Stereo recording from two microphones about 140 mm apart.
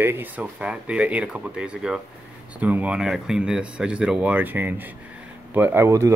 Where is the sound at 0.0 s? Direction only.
15° right (ahead or behind).